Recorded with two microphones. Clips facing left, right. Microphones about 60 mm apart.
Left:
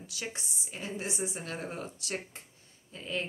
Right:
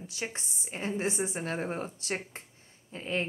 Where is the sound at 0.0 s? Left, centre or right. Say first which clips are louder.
Right 3 dB; right.